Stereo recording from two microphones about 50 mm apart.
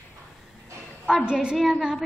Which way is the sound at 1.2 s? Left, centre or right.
Centre.